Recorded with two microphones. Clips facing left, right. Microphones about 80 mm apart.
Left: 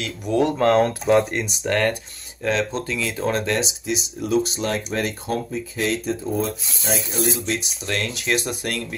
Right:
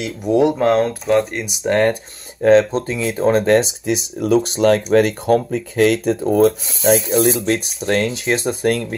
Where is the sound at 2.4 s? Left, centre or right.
Right.